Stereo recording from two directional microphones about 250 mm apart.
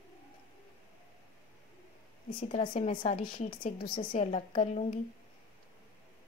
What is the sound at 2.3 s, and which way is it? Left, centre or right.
A woman's voice, left.